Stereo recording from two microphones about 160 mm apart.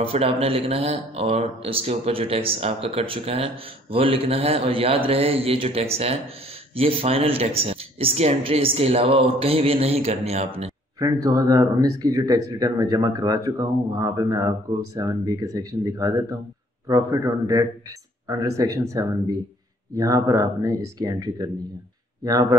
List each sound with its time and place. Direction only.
0.0 s a man's voice: 35° right (ahead or behind)
11.0 s speech: 20° right (ahead or behind)